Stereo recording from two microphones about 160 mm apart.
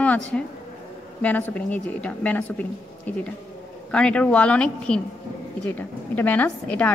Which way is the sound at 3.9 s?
5° left (ahead or behind).